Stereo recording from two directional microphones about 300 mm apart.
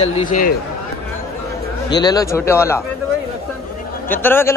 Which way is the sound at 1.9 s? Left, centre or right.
Centre.